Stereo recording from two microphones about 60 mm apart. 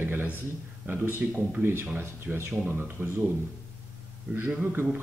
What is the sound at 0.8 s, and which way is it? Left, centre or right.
Speech, right.